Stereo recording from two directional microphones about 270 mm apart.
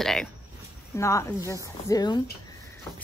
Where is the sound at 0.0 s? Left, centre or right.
Centre.